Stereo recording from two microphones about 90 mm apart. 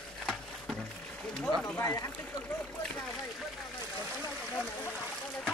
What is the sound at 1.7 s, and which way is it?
Speech, 30° left (ahead or behind).